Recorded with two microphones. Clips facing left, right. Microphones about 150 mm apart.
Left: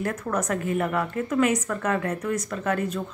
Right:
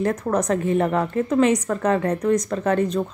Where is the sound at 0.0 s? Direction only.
35° right (ahead or behind).